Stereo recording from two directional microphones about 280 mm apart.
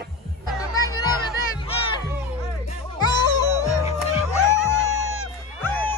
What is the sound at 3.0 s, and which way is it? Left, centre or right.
Music, centre.